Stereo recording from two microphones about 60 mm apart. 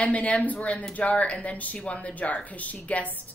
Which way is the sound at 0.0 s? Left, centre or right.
Left.